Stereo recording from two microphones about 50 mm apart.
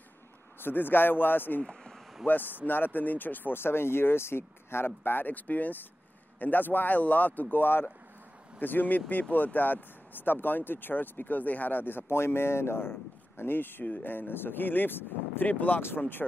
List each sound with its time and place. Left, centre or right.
0.6 s speech: left
1.6 s a sound: centre
2.2 s speech: left
15.8 s speech: left